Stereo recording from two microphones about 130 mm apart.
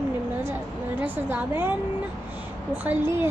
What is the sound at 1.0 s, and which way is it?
Speech, 15° right (ahead or behind).